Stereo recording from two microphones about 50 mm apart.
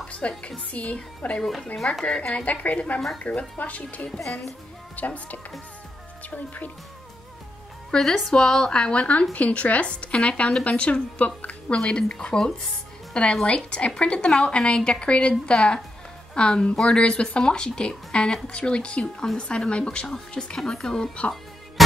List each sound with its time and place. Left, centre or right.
0.2 s speech: left
1.4 s a woman's voice: centre
2.0 s a woman's voice: centre
2.4 s speech: left
4.2 s speech: centre
4.9 s speech: left
7.9 s a woman's voice: centre